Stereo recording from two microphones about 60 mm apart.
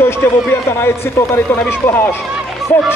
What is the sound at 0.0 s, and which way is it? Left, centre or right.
A man's voice, left.